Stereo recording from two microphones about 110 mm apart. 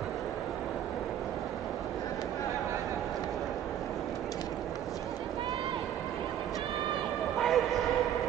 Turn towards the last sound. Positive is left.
turn(degrees=0)  # may be behind; listen again after turning